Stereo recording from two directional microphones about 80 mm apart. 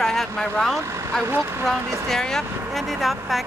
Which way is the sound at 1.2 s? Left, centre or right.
Right.